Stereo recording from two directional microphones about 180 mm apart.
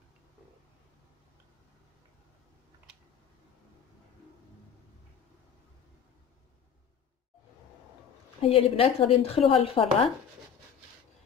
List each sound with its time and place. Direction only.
8.4 s a woman's voice: 30° left (ahead or behind)